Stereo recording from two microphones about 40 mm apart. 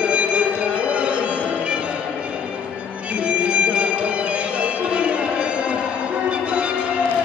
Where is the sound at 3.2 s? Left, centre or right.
Right.